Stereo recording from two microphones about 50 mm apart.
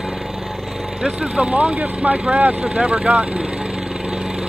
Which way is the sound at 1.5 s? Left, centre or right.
Right.